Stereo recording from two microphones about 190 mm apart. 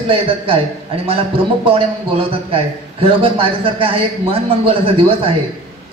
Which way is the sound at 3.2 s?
30° right (ahead or behind).